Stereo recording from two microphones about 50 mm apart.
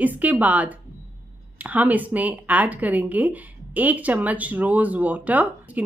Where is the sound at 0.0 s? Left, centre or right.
Right.